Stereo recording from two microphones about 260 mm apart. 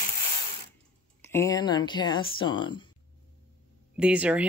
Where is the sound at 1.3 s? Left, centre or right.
Centre.